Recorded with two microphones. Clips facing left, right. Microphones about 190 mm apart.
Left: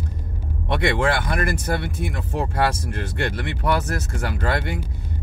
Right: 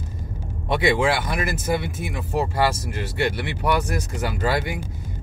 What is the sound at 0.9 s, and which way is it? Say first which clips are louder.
Speech: even; 5° right (ahead or behind).